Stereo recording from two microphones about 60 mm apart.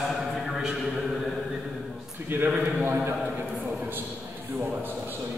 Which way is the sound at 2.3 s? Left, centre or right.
Right.